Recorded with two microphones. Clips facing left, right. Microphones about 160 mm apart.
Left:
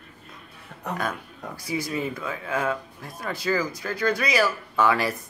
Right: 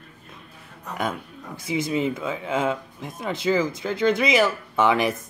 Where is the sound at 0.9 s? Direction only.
20° right (ahead or behind).